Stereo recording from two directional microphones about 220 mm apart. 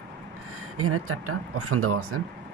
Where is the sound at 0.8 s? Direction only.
80° right.